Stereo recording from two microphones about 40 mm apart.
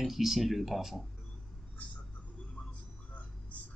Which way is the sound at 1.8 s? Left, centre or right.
Left.